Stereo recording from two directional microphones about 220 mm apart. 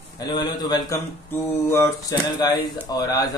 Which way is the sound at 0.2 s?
20° left (ahead or behind).